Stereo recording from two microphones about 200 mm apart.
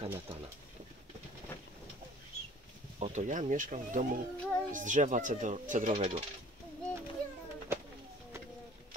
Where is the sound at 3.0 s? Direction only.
35° right (ahead or behind).